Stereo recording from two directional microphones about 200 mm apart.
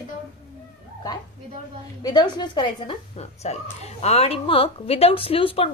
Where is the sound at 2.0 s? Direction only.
20° left (ahead or behind).